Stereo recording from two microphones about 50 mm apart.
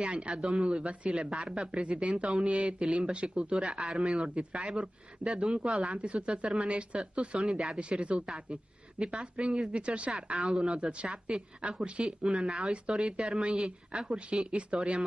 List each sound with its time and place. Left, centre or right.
0.4 s speech: right
1.1 s speech: centre
9.0 s speech: centre
10.3 s speech: centre
10.6 s speech: right